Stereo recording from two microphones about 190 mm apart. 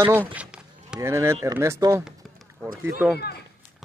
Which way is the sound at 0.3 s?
5° right (ahead or behind).